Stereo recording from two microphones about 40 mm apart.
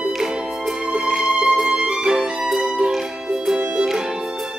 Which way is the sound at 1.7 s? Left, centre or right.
Right.